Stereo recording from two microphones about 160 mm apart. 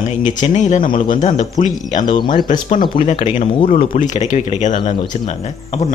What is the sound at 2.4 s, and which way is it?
Speech, 55° left (ahead or behind).